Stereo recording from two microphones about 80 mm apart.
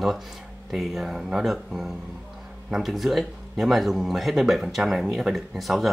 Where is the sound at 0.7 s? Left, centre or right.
Centre.